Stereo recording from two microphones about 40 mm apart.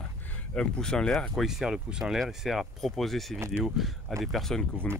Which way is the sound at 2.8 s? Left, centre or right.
Centre.